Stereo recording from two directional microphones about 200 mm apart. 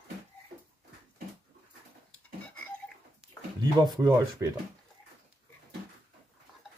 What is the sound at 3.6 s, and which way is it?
Speech, 20° right (ahead or behind).